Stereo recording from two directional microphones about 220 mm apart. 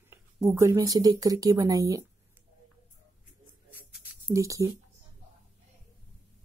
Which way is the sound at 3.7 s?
10° right (ahead or behind).